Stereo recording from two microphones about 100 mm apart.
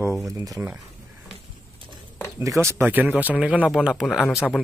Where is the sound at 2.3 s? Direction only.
30° right (ahead or behind).